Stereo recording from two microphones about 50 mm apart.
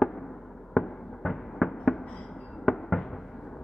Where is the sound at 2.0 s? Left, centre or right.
Centre.